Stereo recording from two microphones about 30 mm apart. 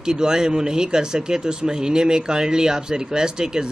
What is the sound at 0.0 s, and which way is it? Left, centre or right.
Speech, right.